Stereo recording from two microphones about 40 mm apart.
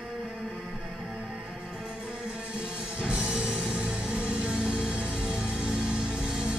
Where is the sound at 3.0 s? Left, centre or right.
Right.